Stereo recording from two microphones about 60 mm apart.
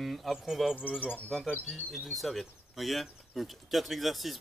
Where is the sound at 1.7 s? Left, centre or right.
Centre.